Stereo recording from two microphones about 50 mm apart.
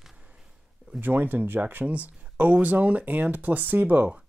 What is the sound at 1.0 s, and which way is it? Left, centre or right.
Speech, right.